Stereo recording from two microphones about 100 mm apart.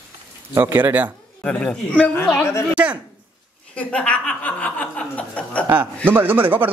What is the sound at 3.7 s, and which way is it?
Speech, 10° left (ahead or behind).